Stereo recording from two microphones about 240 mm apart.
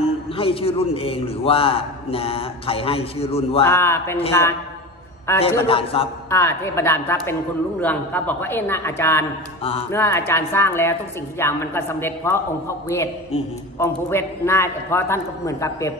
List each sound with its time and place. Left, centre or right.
0.4 s a man's voice: left
3.6 s a woman's voice: centre
5.7 s a man's voice: left
6.3 s a woman's voice: centre
9.6 s music: left
9.8 s a woman's voice: centre